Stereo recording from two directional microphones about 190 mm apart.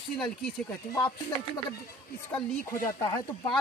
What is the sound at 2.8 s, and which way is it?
Speech, 15° left (ahead or behind).